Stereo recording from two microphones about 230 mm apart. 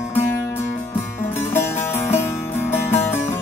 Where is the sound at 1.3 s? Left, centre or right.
Centre.